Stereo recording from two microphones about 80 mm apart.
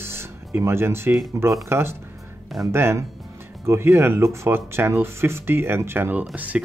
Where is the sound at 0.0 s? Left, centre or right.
Right.